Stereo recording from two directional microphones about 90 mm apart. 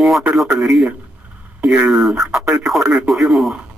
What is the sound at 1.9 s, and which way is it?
Speech, centre (ahead or behind).